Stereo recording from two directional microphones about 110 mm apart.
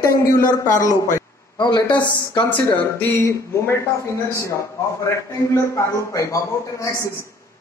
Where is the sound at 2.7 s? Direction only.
15° left (ahead or behind).